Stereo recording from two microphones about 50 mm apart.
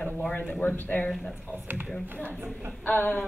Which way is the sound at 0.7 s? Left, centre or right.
Left.